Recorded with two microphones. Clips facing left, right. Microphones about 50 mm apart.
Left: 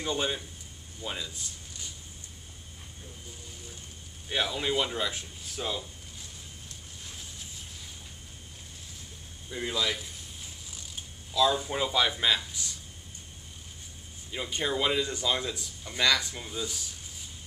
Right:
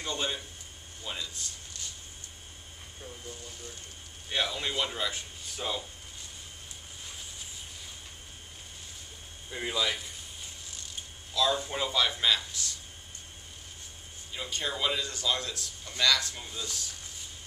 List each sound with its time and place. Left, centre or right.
0.0 s a man's voice: centre
4.3 s speech: centre
9.5 s speech: centre
11.3 s a man's voice: centre
14.3 s a man's voice: centre